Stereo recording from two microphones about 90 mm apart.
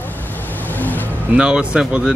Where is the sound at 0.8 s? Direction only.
20° left (ahead or behind).